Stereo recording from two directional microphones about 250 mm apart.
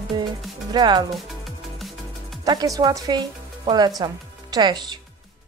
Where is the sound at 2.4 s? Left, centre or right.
Centre.